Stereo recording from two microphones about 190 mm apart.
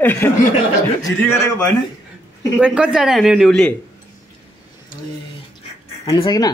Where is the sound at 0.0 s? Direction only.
10° left (ahead or behind).